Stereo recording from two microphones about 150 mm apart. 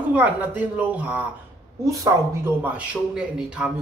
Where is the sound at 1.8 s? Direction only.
20° right (ahead or behind).